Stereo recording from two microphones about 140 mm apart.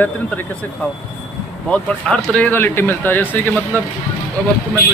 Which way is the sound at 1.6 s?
10° left (ahead or behind).